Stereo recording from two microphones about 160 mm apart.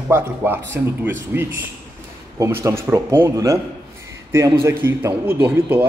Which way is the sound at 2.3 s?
20° right (ahead or behind).